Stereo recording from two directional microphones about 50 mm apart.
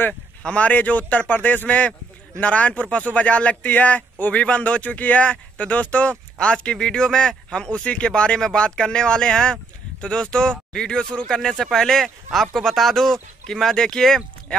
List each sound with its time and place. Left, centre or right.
0.4 s a man's voice: left